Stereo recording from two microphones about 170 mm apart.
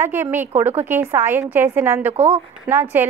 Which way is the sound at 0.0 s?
15° right (ahead or behind).